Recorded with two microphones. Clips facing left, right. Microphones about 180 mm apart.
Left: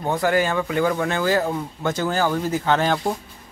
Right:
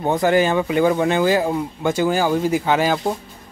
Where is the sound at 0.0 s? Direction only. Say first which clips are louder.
Right 4 dB; 20° right (ahead or behind).